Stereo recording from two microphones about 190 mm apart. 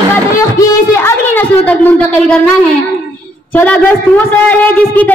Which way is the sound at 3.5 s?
5° left (ahead or behind).